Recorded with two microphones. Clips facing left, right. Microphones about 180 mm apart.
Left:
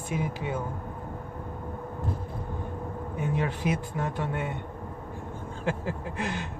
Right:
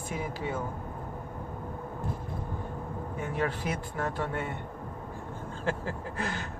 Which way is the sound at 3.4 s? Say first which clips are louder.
Left 1 dB; 15° left (ahead or behind).